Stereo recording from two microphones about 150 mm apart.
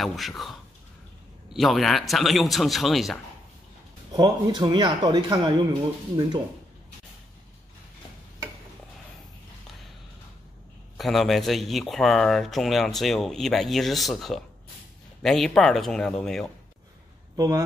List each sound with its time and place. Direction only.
0.0 s speech: centre (ahead or behind)
4.1 s speech: 30° right (ahead or behind)
11.0 s speech: centre (ahead or behind)
17.4 s speech: 20° right (ahead or behind)